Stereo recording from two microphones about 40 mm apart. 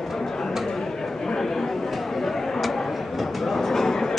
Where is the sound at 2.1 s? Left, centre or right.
Centre.